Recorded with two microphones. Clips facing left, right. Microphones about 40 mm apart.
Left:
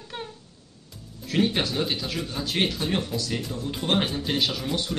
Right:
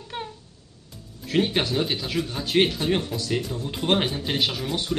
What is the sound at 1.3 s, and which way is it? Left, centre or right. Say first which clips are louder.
Speech: right 1 dB; right.